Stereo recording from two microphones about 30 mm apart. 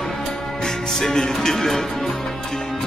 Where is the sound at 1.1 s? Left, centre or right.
Left.